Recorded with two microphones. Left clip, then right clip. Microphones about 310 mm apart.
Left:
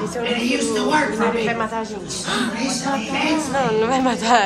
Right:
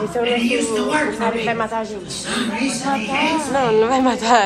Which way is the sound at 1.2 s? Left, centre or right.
Centre.